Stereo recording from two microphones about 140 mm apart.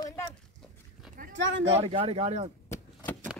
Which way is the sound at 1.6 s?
45° right (ahead or behind).